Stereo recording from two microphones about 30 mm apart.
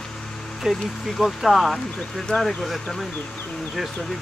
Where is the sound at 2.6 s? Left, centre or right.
Centre.